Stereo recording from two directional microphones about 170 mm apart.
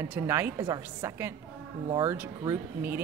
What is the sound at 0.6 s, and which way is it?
A woman's voice, 25° right (ahead or behind).